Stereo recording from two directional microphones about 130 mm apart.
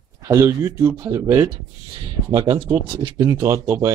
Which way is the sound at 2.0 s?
40° right (ahead or behind).